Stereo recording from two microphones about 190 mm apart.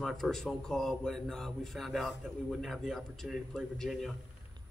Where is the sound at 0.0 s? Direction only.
Centre (ahead or behind).